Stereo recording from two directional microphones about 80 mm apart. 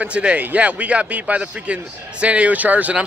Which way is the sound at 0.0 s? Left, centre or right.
Centre.